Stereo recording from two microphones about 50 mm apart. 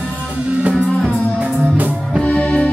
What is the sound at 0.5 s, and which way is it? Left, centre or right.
Music, right.